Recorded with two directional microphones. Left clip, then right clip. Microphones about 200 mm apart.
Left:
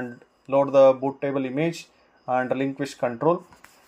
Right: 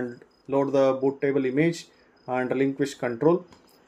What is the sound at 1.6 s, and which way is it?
Speech, 15° right (ahead or behind).